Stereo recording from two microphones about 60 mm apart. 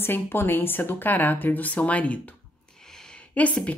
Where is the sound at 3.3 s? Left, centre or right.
Left.